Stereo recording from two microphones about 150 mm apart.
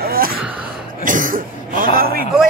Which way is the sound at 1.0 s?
60° right (ahead or behind).